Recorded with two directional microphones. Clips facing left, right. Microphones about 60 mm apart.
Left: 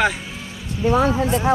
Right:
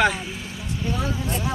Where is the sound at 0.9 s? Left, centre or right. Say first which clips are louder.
Left 10 dB; left.